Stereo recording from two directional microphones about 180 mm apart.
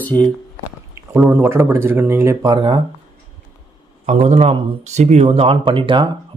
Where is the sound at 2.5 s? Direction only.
25° right (ahead or behind).